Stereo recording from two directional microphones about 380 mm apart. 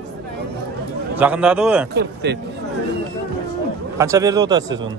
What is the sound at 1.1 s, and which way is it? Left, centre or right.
Speech, centre.